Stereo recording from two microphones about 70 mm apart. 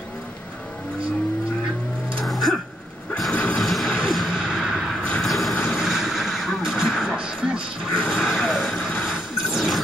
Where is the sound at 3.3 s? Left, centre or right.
Centre.